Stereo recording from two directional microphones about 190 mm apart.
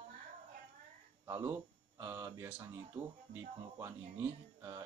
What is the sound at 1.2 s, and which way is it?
Speech, 15° right (ahead or behind).